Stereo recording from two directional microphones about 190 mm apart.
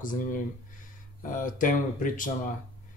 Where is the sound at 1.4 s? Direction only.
45° left (ahead or behind).